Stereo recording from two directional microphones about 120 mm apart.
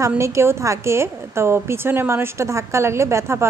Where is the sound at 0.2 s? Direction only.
20° right (ahead or behind).